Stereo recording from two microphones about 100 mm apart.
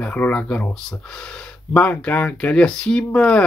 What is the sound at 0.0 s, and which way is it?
Speech, 15° left (ahead or behind).